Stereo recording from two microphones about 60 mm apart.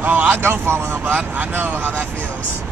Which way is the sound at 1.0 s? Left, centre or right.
Right.